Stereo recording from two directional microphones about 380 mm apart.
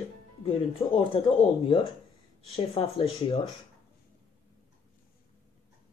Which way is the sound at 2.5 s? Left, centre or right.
Centre.